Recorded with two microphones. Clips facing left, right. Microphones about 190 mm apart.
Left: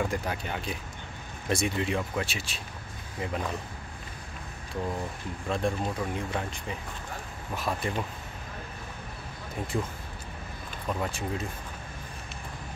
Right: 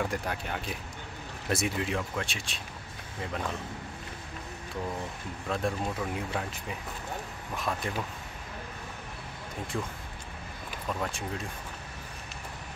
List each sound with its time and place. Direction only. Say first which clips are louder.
0.0 s speech: left 2 dB; centre (ahead or behind)
5.5 s speech: left 2 dB; centre (ahead or behind)
9.7 s speech: left 3 dB; 20° left (ahead or behind)
10.9 s speech: left 2 dB; 5° left (ahead or behind)